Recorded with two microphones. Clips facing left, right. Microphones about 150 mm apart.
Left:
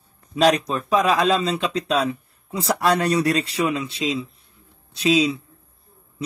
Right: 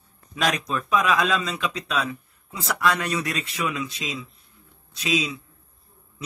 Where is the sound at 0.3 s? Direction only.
35° left (ahead or behind).